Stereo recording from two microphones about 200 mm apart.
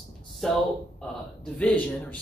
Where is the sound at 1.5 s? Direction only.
5° left (ahead or behind).